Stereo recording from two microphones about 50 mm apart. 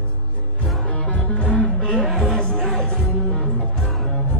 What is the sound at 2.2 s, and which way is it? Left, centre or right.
Music, centre.